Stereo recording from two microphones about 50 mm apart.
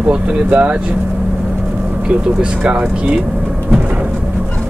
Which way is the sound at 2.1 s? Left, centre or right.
Right.